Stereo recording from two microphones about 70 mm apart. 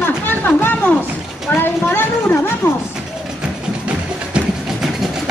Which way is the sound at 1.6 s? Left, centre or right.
Left.